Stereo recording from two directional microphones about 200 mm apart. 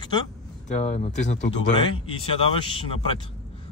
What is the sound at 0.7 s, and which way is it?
Speech, 35° left (ahead or behind).